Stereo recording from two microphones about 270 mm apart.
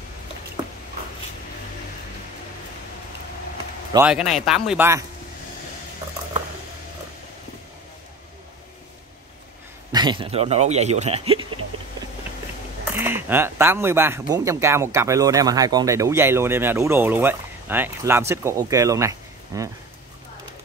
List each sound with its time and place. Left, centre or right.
3.9 s speech: centre
9.9 s speech: centre
12.9 s speech: centre